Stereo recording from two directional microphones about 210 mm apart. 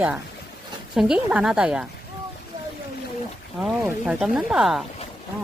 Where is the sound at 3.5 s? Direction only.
5° right (ahead or behind).